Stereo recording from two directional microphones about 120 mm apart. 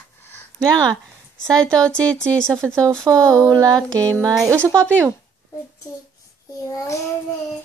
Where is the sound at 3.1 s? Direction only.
30° right (ahead or behind).